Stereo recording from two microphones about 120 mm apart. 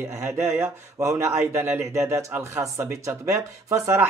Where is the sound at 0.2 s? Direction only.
20° right (ahead or behind).